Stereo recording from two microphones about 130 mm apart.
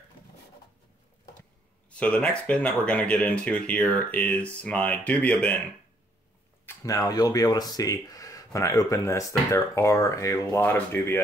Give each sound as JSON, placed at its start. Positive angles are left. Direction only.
{"t": 1.9, "sound": "speech", "side_deg": 10}
{"t": 6.6, "sound": "speech", "side_deg": 20}